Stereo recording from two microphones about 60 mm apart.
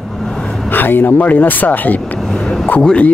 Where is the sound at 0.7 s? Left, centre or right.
Left.